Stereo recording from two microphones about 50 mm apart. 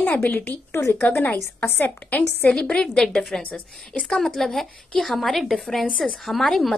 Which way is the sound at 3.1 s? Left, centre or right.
Centre.